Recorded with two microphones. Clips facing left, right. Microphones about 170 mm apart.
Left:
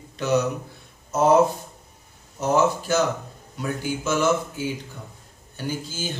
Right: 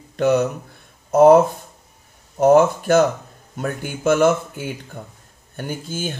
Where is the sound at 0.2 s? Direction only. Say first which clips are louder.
Right 9 dB; 55° right (ahead or behind).